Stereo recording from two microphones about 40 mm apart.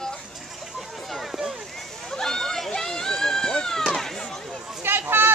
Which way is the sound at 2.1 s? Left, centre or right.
Centre.